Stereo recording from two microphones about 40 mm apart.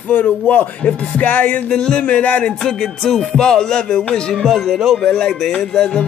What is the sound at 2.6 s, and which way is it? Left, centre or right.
Speech, centre.